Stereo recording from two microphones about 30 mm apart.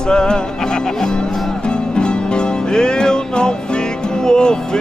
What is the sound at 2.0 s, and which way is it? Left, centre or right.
Music, left.